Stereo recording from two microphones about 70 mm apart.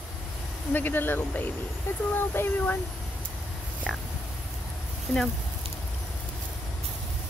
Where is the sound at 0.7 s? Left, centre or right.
Left.